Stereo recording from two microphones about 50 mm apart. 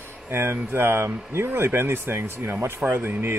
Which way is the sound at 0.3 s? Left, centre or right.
Right.